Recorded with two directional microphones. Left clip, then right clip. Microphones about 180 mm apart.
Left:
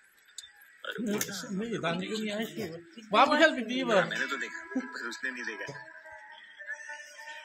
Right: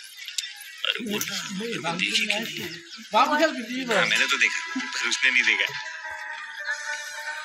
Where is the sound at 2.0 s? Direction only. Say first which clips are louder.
Right 12 dB; 40° right (ahead or behind).